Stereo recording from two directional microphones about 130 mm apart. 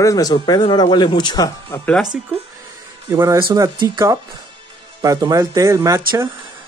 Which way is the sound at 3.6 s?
30° right (ahead or behind).